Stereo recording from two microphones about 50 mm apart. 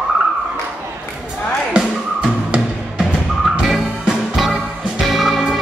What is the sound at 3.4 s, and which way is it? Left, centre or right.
Music, centre.